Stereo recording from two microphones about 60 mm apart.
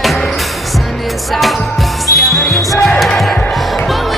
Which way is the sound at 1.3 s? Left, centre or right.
Centre.